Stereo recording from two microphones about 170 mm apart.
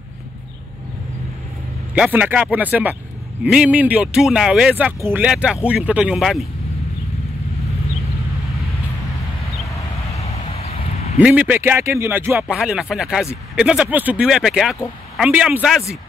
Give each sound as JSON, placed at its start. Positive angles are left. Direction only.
{"t": 2.0, "sound": "speech", "side_deg": -10}
{"t": 10.1, "sound": "a sound", "side_deg": 35}
{"t": 11.1, "sound": "speech", "side_deg": -10}